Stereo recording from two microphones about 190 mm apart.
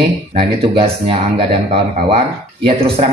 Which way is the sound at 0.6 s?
30° right (ahead or behind).